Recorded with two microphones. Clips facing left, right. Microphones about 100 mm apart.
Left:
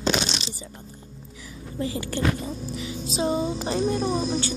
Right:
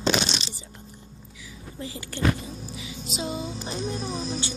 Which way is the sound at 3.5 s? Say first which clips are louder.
Left 7 dB; 70° left (ahead or behind).